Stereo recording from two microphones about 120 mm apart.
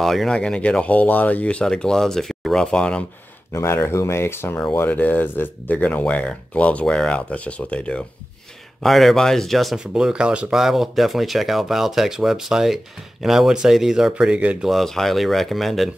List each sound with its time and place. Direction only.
0.0 s speech: centre (ahead or behind)
3.5 s speech: 20° left (ahead or behind); by 14.7 s 10° right (ahead or behind)
14.7 s speech: centre (ahead or behind)